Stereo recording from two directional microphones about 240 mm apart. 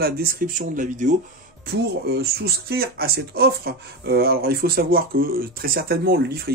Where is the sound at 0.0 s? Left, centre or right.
Right.